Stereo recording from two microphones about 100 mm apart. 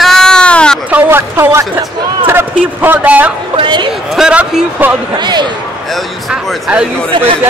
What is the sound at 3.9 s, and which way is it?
Speech, 5° right (ahead or behind).